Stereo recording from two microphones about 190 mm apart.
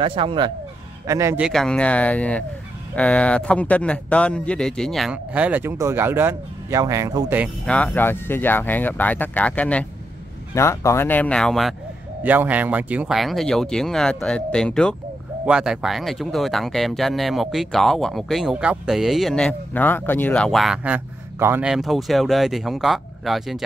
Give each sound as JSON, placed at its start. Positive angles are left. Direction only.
{"t": 0.0, "sound": "speech", "side_deg": -25}
{"t": 1.0, "sound": "speech", "side_deg": -15}
{"t": 1.4, "sound": "speech", "side_deg": 0}
{"t": 7.6, "sound": "speech", "side_deg": 5}
{"t": 12.2, "sound": "speech", "side_deg": -10}